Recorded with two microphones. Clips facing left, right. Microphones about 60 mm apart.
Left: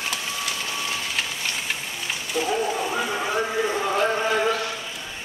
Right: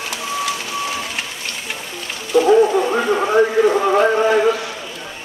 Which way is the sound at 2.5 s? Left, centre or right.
Right.